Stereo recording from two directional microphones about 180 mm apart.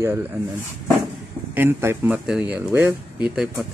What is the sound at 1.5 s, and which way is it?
Speech, 10° right (ahead or behind).